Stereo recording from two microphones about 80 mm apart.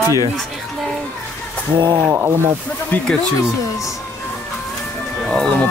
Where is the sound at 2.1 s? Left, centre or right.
Right.